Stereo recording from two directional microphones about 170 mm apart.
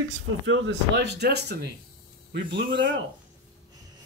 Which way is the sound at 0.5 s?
85° right.